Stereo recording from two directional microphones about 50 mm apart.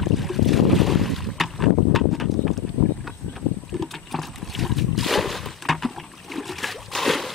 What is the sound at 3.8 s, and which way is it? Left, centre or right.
Boat, centre.